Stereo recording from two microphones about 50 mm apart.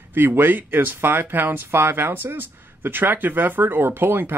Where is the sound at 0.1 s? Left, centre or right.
Right.